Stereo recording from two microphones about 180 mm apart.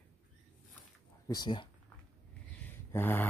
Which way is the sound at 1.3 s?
25° left (ahead or behind).